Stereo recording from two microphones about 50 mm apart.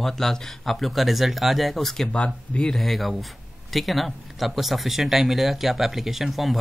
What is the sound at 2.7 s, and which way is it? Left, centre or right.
Speech, centre.